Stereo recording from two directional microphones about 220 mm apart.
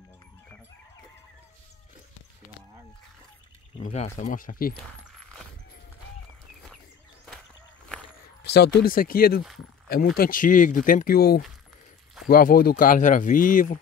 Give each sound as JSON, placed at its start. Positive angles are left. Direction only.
{"t": 3.7, "sound": "speech", "side_deg": 30}
{"t": 8.5, "sound": "speech", "side_deg": 50}